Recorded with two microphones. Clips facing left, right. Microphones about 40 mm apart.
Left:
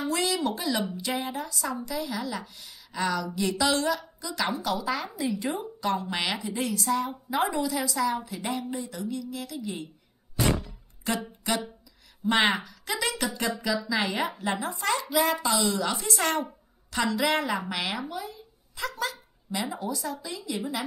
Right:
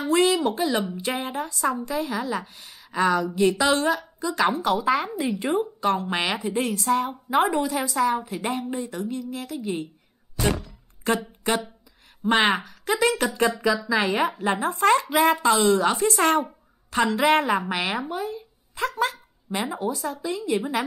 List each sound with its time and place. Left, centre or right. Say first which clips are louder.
0.0 s a woman's voice: right 7 dB; right
11.4 s a woman's voice: right 5 dB; right